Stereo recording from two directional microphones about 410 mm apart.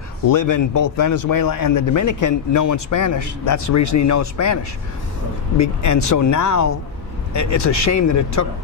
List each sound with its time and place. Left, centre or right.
0.3 s a man's voice: left
5.6 s a man's voice: left